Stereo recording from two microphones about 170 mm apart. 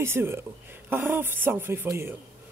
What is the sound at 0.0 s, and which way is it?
Speech, 15° right (ahead or behind).